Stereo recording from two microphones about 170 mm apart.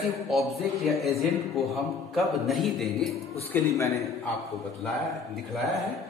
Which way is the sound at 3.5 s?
15° left (ahead or behind).